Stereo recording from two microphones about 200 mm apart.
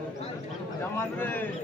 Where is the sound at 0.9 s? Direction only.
10° left (ahead or behind).